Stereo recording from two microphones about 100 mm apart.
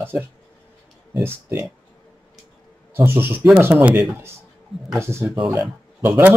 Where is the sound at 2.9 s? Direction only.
25° right (ahead or behind).